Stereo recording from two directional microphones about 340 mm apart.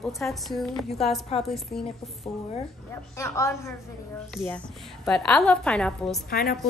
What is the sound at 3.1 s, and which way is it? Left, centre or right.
A woman's voice, centre.